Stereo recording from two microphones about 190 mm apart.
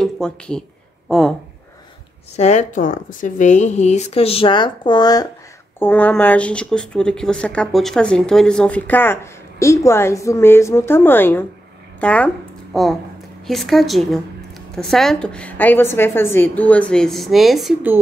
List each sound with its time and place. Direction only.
0.0 s a sound: 5° left (ahead or behind)
2.3 s a woman's voice: 35° left (ahead or behind); by 5.3 s 20° left (ahead or behind)
5.8 s a woman's voice: 10° left (ahead or behind)